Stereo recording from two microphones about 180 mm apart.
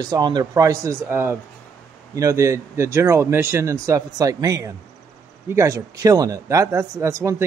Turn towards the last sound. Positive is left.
turn(degrees=-15)  # may be behind; listen again after turning